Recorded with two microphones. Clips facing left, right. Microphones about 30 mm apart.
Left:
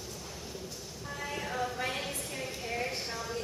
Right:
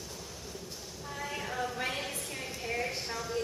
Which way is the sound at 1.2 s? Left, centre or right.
Centre.